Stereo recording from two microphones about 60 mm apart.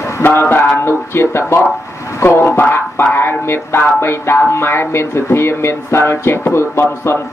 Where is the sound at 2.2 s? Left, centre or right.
Left.